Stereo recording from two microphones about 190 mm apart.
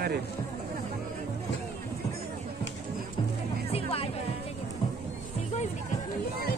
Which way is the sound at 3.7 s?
30° left (ahead or behind).